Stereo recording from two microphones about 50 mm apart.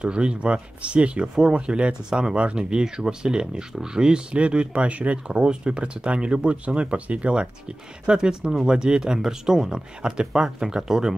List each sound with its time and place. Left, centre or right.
0.0 s speech: centre